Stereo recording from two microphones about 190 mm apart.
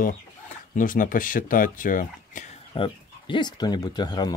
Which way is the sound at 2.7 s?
25° left (ahead or behind).